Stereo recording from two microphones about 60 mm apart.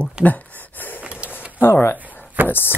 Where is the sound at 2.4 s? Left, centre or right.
Right.